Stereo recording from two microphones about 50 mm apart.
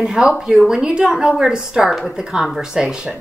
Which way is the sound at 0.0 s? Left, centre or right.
Centre.